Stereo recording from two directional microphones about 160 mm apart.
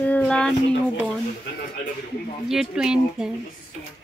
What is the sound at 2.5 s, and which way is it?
Speech, 5° right (ahead or behind).